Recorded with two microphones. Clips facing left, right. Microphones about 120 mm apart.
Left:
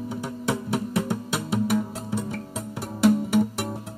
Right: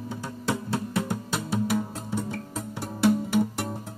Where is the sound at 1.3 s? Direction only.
5° left (ahead or behind).